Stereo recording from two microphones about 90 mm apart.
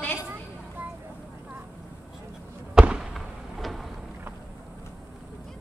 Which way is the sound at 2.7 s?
10° right (ahead or behind).